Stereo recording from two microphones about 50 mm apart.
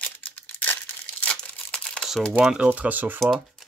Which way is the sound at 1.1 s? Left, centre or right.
Left.